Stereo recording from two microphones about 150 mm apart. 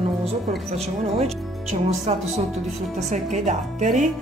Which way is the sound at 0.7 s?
45° right (ahead or behind).